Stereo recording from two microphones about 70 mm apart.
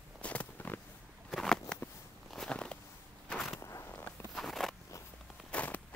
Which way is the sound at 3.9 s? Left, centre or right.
Left.